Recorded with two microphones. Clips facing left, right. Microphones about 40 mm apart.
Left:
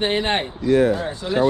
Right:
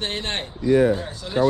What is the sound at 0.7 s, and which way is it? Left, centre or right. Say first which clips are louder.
Speech: even; left.